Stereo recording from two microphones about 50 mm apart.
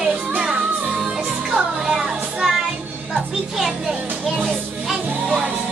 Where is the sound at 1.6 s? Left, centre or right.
Centre.